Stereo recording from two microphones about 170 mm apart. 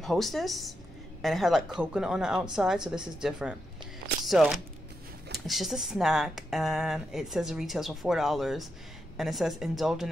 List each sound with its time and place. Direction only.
0.0 s speech: centre (ahead or behind)